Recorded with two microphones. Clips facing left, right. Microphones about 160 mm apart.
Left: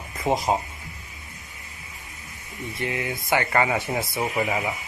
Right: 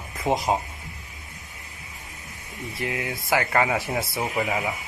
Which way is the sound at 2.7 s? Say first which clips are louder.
Left 1 dB; centre (ahead or behind).